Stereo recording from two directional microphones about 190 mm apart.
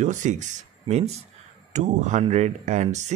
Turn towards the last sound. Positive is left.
turn(degrees=-35)  # may be behind; listen again after turning